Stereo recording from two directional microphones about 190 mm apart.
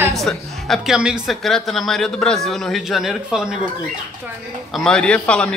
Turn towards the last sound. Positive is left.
turn(degrees=5)  # may be behind; listen again after turning